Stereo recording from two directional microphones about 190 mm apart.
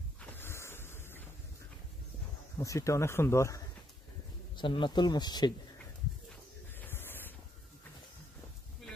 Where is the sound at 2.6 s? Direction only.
15° left (ahead or behind).